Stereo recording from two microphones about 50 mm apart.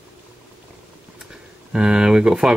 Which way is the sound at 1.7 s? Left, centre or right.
Centre.